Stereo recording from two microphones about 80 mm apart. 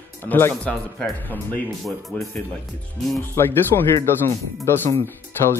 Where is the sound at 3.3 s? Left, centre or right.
Left.